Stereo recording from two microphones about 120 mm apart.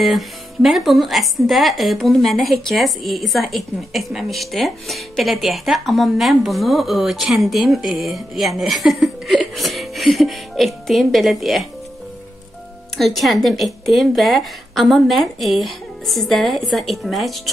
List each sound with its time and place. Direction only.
0.0 s a woman's voice: centre (ahead or behind)
12.9 s a woman's voice: centre (ahead or behind)